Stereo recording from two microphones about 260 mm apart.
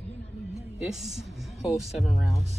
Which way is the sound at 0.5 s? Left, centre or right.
Centre.